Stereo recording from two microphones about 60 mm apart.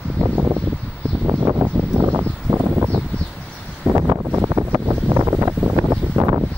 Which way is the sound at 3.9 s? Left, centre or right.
Centre.